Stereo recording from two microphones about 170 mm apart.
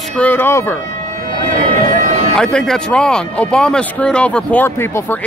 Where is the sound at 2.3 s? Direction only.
5° left (ahead or behind).